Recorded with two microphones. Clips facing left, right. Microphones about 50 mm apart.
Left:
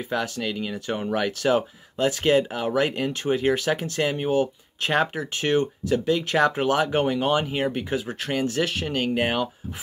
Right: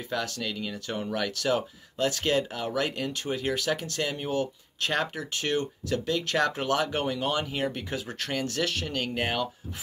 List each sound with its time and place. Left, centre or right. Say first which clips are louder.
0.1 s speech: left 4 dB; left